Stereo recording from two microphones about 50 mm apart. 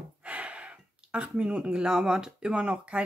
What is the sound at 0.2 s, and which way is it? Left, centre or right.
Speech, right.